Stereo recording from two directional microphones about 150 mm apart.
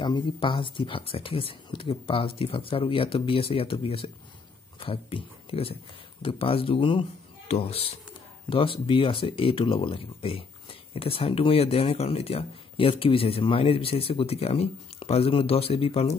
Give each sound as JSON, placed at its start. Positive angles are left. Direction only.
{"t": 0.0, "sound": "speech", "side_deg": 30}